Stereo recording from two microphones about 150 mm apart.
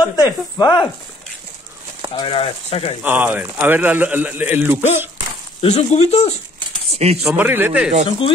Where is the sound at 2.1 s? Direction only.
35° left (ahead or behind).